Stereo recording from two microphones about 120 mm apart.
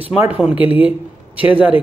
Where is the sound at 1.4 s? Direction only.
10° right (ahead or behind).